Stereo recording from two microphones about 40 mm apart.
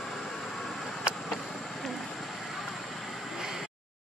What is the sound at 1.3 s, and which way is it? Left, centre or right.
Vehicle, centre.